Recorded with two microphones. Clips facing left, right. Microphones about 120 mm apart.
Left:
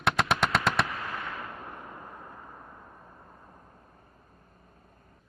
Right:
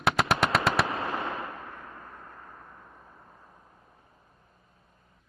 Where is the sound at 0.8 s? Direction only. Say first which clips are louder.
Right 5 dB; 30° right (ahead or behind).